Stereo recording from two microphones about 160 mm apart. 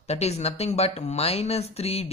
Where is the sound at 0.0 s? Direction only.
40° left (ahead or behind).